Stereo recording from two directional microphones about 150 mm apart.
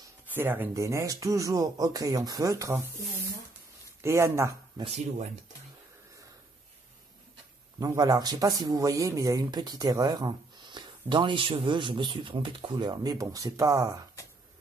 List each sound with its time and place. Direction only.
0.3 s speech: 15° right (ahead or behind)
4.0 s speech: 20° right (ahead or behind)
4.8 s speech: 45° right (ahead or behind)
7.8 s speech: 25° right (ahead or behind)